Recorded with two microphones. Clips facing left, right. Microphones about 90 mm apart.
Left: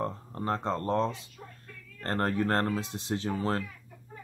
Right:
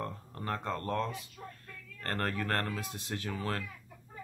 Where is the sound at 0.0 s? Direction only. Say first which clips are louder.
Left 6 dB; 25° left (ahead or behind).